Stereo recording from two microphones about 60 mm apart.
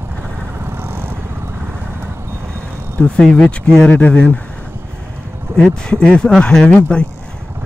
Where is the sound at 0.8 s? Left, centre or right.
Right.